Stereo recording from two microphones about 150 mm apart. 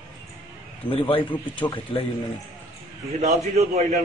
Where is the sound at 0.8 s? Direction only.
35° left (ahead or behind).